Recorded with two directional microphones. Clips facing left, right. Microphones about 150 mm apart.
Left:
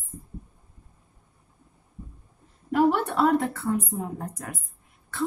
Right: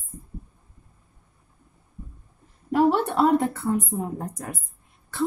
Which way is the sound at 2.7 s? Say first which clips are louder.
Right 2 dB; 20° right (ahead or behind).